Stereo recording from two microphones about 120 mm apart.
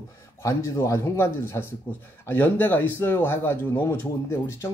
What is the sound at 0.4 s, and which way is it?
Speech, 25° left (ahead or behind).